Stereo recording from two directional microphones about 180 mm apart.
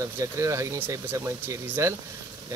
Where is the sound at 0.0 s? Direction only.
15° right (ahead or behind).